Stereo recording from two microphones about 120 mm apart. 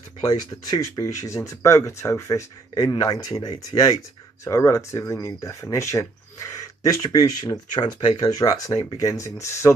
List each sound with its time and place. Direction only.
0.2 s speech: 35° left (ahead or behind)